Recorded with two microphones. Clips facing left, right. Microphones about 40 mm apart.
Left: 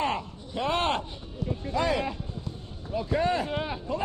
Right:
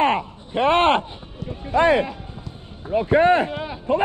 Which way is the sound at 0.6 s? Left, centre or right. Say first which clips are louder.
Right 10 dB; right.